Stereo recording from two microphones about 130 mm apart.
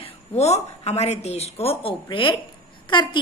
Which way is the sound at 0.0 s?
55° left (ahead or behind).